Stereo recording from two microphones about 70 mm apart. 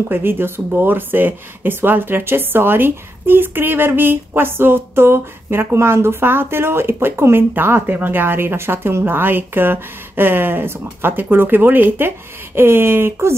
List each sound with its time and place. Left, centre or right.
0.1 s speech: right